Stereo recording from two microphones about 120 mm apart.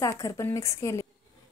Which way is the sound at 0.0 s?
25° left (ahead or behind).